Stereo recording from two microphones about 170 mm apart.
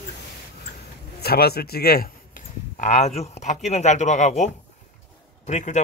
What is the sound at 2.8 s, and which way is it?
Speech, 45° left (ahead or behind).